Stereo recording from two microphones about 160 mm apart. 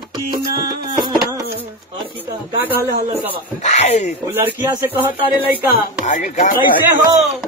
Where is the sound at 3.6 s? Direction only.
45° left (ahead or behind).